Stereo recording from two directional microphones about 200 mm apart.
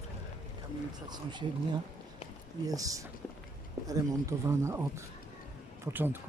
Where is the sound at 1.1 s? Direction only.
20° right (ahead or behind).